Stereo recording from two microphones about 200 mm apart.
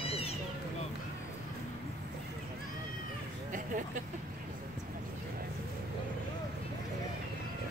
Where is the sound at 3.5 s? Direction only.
40° right (ahead or behind).